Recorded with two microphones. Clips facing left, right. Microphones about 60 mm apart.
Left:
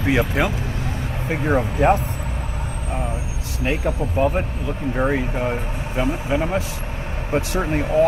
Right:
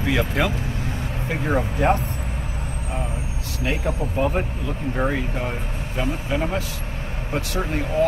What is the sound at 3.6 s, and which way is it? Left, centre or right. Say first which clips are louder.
A man's voice: left 2 dB; centre.